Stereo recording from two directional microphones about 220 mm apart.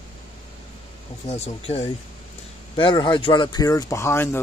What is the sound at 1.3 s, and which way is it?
Speech, 30° left (ahead or behind).